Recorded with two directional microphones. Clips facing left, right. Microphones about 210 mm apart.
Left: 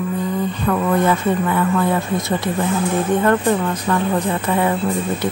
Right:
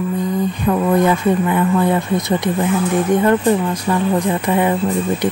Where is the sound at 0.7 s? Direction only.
15° right (ahead or behind).